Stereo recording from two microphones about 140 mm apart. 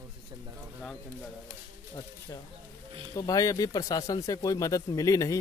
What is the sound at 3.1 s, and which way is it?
Speech, 25° left (ahead or behind).